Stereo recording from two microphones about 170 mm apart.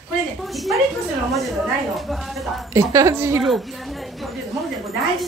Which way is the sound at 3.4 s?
Centre (ahead or behind).